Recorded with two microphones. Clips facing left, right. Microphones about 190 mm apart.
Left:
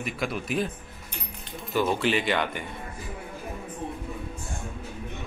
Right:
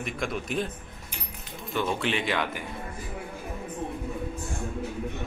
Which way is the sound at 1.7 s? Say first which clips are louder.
Left 3 dB; centre (ahead or behind).